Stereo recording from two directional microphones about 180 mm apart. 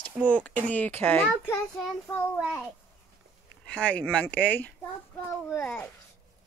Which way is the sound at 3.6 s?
5° left (ahead or behind).